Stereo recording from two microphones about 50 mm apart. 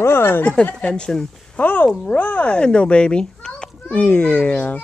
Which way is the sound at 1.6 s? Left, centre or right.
Left.